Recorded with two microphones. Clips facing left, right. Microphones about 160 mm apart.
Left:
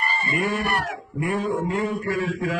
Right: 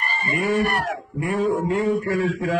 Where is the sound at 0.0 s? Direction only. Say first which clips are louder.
Even; 40° right (ahead or behind).